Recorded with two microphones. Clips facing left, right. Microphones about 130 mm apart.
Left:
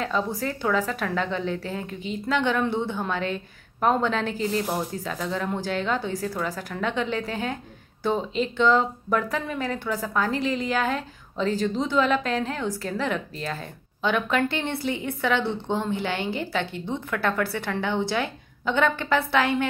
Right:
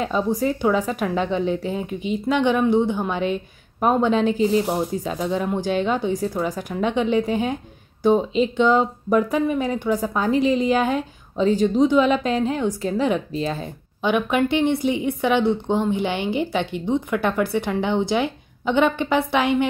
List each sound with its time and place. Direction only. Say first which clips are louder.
0.0 s speech: right 5 dB; 15° right (ahead or behind)